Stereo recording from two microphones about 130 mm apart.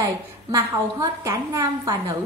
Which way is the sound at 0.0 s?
30° right (ahead or behind).